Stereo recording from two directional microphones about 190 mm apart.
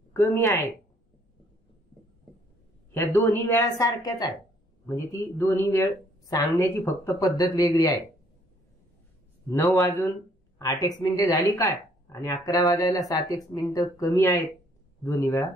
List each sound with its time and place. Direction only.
0.1 s speech: 10° left (ahead or behind)
2.9 s speech: 15° left (ahead or behind)
9.8 s speech: 15° left (ahead or behind)